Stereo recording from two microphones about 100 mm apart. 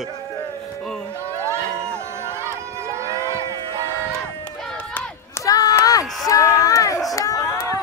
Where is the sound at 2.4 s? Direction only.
30° right (ahead or behind).